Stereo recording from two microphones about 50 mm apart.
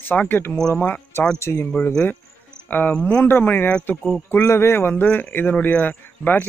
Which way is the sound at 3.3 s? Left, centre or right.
Left.